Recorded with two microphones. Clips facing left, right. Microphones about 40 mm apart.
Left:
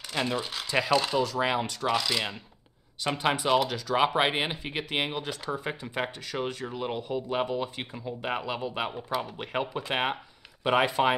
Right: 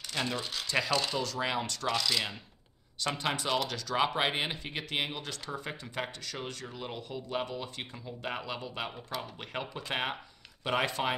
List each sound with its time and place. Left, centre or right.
0.1 s speech: centre